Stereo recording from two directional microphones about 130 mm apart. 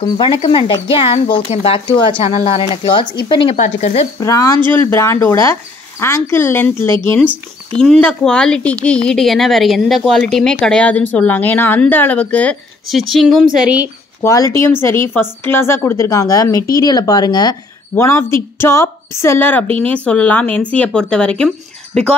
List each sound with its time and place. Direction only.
0.0 s speech: 40° left (ahead or behind)
3.5 s speech: 60° left (ahead or behind)
4.2 s speech: 25° left (ahead or behind)
7.7 s a woman's voice: 5° left (ahead or behind)
12.8 s speech: centre (ahead or behind)
14.2 s speech: 25° left (ahead or behind)
17.9 s a woman's voice: 20° left (ahead or behind)